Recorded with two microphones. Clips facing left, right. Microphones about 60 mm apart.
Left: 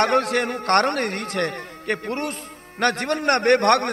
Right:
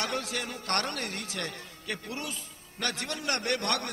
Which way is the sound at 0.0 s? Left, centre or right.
Left.